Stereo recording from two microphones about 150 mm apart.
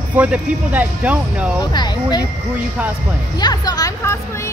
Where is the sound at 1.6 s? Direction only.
30° left (ahead or behind).